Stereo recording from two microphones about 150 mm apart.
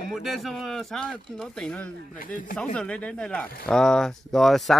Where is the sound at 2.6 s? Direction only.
10° left (ahead or behind).